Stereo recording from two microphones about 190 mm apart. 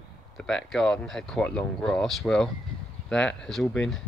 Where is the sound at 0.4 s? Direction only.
5° left (ahead or behind).